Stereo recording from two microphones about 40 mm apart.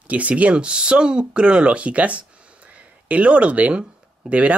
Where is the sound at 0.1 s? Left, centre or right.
Right.